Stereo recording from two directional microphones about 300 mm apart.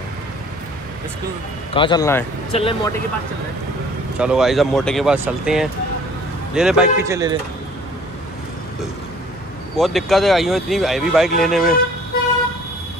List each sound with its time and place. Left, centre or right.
1.7 s a man's voice: centre
4.2 s speech: centre
9.8 s speech: centre